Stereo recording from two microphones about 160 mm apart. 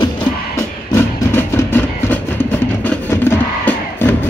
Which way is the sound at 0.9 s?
15° left (ahead or behind).